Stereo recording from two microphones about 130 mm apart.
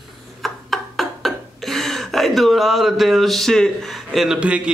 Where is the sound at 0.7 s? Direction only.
Centre (ahead or behind).